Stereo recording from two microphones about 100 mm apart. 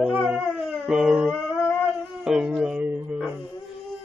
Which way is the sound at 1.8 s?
5° right (ahead or behind).